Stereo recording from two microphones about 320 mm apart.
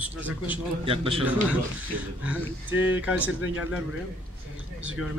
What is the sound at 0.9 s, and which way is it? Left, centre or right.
Speech, centre.